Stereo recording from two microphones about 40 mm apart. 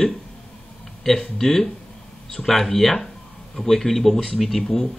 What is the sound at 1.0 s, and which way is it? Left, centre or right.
Speech, centre.